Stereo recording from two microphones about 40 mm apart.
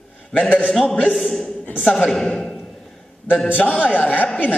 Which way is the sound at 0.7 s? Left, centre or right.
Centre.